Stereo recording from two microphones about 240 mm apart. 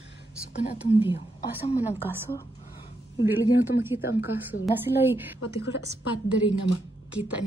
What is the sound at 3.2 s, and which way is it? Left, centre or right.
Speech, centre.